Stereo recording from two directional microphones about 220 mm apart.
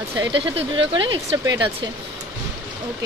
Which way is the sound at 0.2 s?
25° right (ahead or behind).